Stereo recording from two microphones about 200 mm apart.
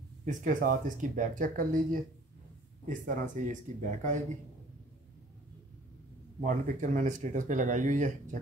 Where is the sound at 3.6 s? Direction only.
40° right (ahead or behind).